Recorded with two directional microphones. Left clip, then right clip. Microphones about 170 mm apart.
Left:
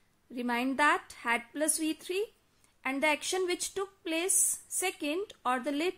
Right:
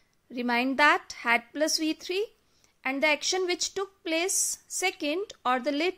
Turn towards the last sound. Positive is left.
turn(degrees=-25)  # may be behind; listen again after turning